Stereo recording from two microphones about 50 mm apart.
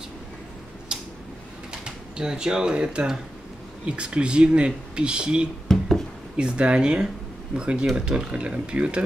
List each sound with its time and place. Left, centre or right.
0.9 s tick-tock: centre
1.7 s speech: centre
5.7 s a sound: centre
6.3 s speech: right